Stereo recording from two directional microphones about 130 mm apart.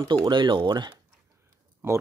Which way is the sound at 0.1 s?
40° right (ahead or behind).